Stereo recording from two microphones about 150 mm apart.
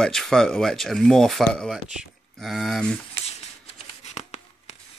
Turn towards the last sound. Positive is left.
turn(degrees=45)  # may be behind; listen again after turning